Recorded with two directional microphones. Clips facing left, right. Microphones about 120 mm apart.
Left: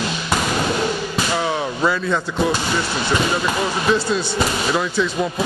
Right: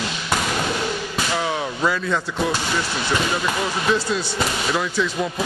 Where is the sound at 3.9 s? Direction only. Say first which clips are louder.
Left 3 dB; 30° left (ahead or behind).